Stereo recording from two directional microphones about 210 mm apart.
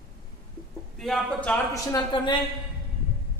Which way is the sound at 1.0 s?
Centre (ahead or behind).